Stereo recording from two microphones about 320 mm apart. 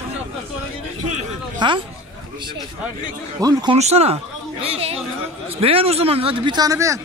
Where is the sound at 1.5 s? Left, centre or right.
Centre.